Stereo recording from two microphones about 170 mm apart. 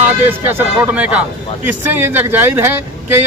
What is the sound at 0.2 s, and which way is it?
A man's voice, 10° right (ahead or behind).